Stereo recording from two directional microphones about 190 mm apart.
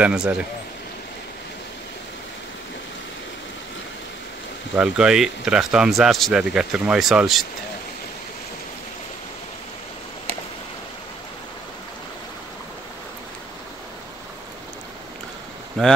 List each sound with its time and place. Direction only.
0.0 s speech: 5° right (ahead or behind)
4.7 s speech: 5° right (ahead or behind)
15.8 s speech: centre (ahead or behind)